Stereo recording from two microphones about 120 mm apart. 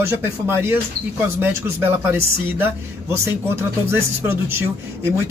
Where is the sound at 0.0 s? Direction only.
20° right (ahead or behind).